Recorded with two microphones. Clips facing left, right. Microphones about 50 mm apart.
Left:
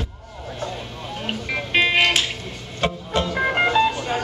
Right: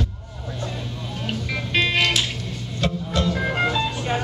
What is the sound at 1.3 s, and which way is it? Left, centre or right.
Music, left.